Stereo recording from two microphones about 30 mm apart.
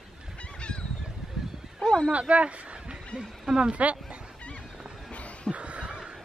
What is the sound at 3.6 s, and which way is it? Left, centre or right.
Speech, right.